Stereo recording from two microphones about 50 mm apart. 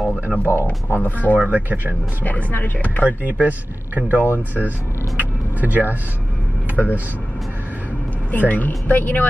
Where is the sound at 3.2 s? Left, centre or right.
Right.